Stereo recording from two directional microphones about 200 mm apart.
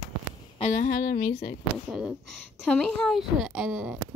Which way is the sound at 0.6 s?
40° left (ahead or behind).